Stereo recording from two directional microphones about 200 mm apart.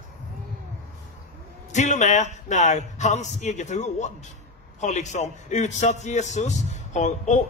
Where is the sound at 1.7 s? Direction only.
35° left (ahead or behind).